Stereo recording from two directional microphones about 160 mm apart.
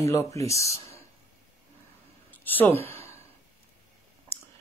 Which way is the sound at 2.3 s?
10° left (ahead or behind).